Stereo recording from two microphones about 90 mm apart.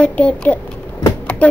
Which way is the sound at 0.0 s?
15° left (ahead or behind).